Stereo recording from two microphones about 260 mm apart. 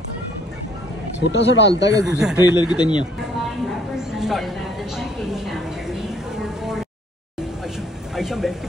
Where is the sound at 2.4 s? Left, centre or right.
Centre.